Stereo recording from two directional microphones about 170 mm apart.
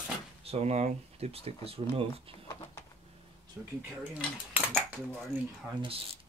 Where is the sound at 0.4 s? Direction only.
35° right (ahead or behind).